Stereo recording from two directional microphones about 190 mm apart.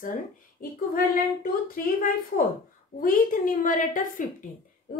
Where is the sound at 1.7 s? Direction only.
45° left (ahead or behind).